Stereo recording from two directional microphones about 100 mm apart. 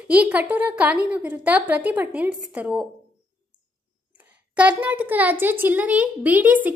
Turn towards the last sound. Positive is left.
turn(degrees=-15)  # may be behind; listen again after turning